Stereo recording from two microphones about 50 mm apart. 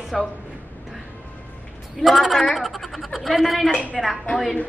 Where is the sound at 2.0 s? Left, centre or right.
Centre.